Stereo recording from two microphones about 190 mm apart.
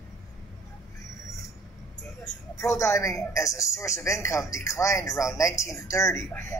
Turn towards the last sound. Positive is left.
turn(degrees=15)  # may be behind; listen again after turning